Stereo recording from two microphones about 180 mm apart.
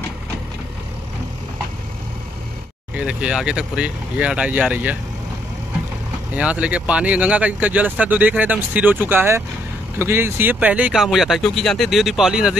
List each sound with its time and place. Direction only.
3.0 s speech: 5° right (ahead or behind)
6.3 s speech: 5° right (ahead or behind)